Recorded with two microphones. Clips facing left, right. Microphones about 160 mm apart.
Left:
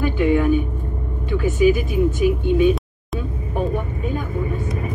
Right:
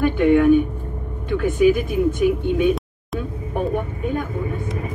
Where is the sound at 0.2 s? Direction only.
5° left (ahead or behind).